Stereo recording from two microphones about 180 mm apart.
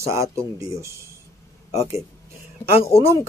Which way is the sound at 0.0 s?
15° right (ahead or behind).